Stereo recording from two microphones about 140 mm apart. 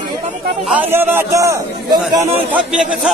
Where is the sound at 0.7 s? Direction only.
15° right (ahead or behind).